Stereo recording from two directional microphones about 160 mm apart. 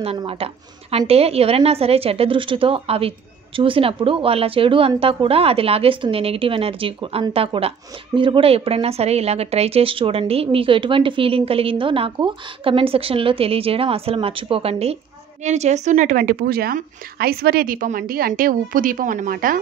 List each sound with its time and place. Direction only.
0.2 s a woman's voice: 35° right (ahead or behind); by 19.6 s 60° right (ahead or behind)